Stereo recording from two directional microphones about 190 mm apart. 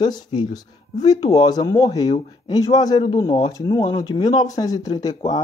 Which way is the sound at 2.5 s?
20° left (ahead or behind).